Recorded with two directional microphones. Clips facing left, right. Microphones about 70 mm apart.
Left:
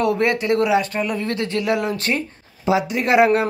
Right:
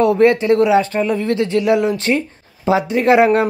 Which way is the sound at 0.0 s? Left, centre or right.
Right.